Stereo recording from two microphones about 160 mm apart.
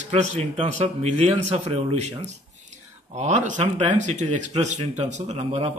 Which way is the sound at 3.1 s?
45° right (ahead or behind).